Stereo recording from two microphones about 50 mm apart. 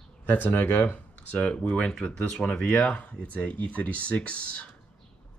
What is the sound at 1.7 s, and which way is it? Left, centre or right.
Speech, centre.